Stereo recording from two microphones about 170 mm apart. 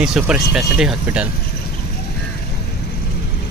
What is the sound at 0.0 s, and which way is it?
Speech, 5° right (ahead or behind).